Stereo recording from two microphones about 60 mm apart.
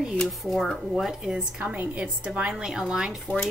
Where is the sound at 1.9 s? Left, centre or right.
Centre.